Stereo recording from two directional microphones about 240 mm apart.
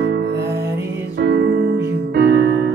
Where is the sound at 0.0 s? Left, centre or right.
Right.